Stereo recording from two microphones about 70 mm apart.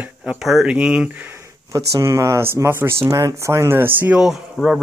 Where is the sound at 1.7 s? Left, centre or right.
Right.